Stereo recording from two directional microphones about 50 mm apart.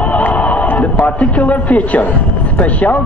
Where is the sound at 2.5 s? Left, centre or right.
Left.